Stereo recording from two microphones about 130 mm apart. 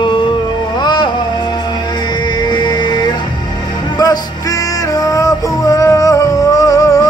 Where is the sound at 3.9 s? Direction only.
30° left (ahead or behind).